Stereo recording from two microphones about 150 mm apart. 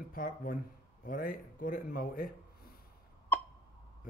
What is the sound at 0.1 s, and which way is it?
Speech, 70° left (ahead or behind).